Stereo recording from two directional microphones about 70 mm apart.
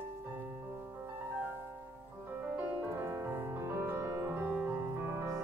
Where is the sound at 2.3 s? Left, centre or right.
Right.